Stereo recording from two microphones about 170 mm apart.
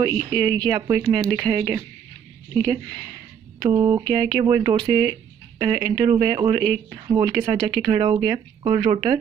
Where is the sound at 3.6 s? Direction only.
25° right (ahead or behind).